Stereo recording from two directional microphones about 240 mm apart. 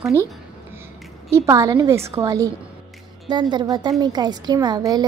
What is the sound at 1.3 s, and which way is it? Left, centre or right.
A woman's voice, centre.